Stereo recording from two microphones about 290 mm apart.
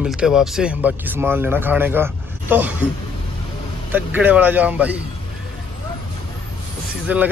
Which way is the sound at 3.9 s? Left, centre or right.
Centre.